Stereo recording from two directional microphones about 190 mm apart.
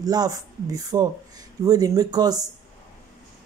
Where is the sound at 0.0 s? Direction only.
20° right (ahead or behind).